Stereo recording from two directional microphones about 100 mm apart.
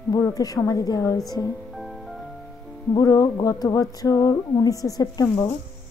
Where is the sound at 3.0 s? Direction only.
40° left (ahead or behind).